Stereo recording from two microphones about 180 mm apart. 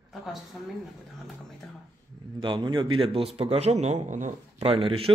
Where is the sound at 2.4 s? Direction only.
25° right (ahead or behind).